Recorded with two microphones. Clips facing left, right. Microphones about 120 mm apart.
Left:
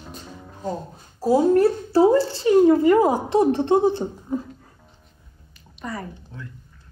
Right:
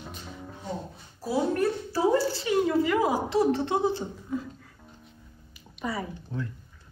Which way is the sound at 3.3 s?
25° left (ahead or behind).